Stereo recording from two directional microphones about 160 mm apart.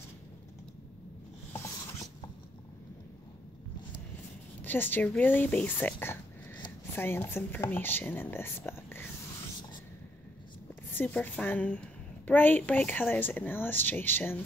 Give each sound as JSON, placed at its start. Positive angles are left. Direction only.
{"t": 4.6, "sound": "a woman's voice", "side_deg": 10}
{"t": 10.9, "sound": "a woman's voice", "side_deg": 10}